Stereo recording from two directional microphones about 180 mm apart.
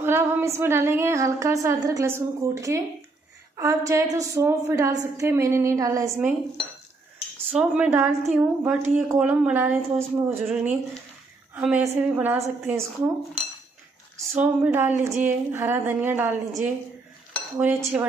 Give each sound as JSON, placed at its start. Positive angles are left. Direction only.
{"t": 0.0, "sound": "a sound", "side_deg": -15}
{"t": 0.6, "sound": "a woman's voice", "side_deg": -15}
{"t": 7.4, "sound": "a woman's voice", "side_deg": -5}
{"t": 14.3, "sound": "a woman's voice", "side_deg": -10}